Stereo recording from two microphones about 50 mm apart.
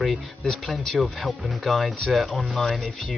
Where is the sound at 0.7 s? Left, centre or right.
Centre.